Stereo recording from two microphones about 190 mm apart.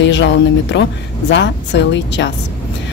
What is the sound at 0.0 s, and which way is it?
Speech, 70° left (ahead or behind).